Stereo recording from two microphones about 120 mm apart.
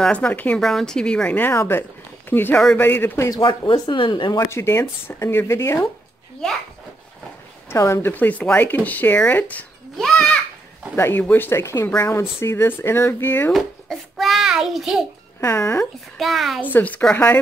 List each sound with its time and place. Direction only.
0.0 s speech: 10° left (ahead or behind)
0.6 s speech: centre (ahead or behind)
2.5 s a child's voice: 5° left (ahead or behind)
2.8 s speech: 20° left (ahead or behind)
3.4 s speech: 40° left (ahead or behind)
6.4 s a child's voice: 5° left (ahead or behind)
7.7 s speech: 25° left (ahead or behind)
10.0 s children playing: 5° left (ahead or behind)
11.0 s speech: 15° left (ahead or behind)
13.5 s a child's voice: centre (ahead or behind)
15.4 s speech: 25° left (ahead or behind)
15.8 s a child's voice: centre (ahead or behind)
16.7 s speech: 10° left (ahead or behind)